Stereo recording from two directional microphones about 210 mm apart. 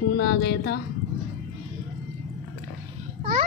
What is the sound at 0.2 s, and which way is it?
Speech, 50° left (ahead or behind).